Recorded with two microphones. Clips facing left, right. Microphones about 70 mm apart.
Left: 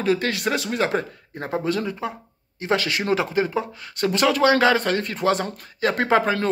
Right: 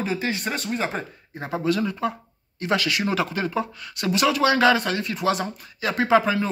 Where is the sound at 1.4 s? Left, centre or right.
Left.